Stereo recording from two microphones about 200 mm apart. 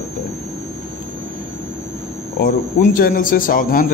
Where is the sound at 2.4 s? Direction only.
45° left (ahead or behind).